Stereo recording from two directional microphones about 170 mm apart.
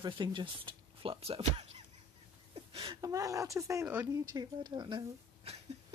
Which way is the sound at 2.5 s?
35° right (ahead or behind).